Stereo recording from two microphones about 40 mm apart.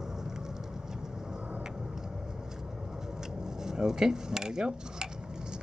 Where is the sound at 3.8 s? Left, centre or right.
Centre.